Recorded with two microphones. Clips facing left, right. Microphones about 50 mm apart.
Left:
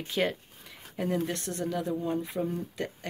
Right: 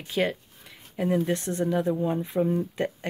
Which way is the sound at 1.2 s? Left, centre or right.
Right.